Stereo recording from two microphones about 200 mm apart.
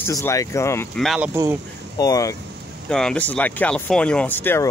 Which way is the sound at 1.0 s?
Centre (ahead or behind).